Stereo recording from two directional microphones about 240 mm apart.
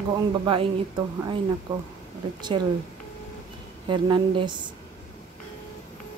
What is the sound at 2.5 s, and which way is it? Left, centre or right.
Speech, centre.